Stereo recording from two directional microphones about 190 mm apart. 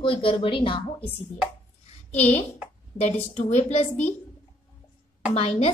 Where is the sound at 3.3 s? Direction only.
40° left (ahead or behind).